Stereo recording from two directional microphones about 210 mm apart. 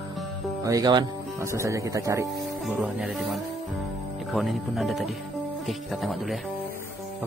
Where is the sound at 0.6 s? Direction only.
15° right (ahead or behind).